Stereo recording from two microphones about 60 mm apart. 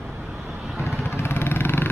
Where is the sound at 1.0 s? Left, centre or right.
Left.